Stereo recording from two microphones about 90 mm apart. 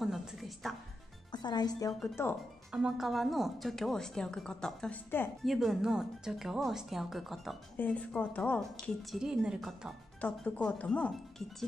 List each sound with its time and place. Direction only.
0.0 s music: 5° right (ahead or behind)
1.3 s speech: 50° left (ahead or behind)
2.7 s speech: 5° right (ahead or behind)
7.7 s speech: 15° left (ahead or behind)
8.5 s speech: 5° left (ahead or behind)
9.2 s speech: 5° right (ahead or behind)
10.2 s speech: 15° left (ahead or behind)